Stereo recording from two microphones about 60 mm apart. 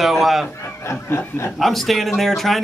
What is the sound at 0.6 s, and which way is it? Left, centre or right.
Speech, left.